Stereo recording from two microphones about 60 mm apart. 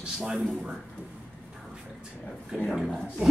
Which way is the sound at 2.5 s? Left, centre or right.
Centre.